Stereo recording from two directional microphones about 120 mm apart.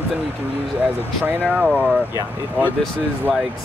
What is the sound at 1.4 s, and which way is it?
Speech, 10° right (ahead or behind).